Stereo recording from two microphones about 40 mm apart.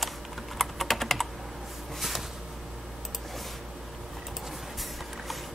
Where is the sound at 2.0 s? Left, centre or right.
Centre.